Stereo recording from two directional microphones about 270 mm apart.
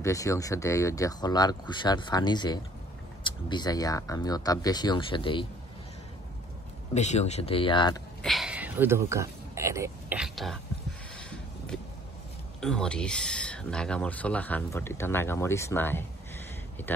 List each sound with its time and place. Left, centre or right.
0.0 s speech: centre
6.9 s speech: left
8.2 s speech: centre
11.1 s a sound: centre
12.5 s speech: centre